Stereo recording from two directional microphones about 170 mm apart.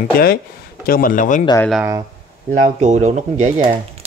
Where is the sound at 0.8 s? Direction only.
55° left (ahead or behind).